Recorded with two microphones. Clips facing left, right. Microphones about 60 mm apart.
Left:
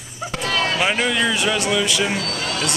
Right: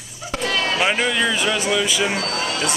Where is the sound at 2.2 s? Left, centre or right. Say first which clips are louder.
Right 2 dB; right.